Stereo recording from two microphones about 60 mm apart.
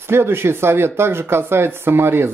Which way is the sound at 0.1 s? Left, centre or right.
Right.